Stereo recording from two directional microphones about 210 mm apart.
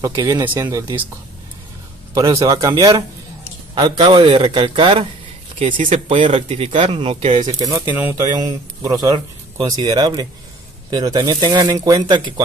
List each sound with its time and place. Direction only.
0.0 s speech: 15° right (ahead or behind)
2.1 s speech: 15° right (ahead or behind)